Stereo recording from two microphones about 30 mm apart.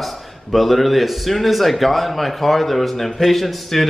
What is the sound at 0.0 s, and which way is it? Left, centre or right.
A man's voice, centre.